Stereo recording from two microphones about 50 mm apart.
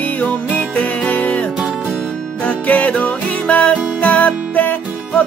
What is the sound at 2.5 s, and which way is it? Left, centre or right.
Music, left.